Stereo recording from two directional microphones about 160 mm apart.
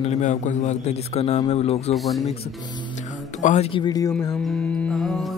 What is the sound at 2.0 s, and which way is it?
Speech, centre (ahead or behind).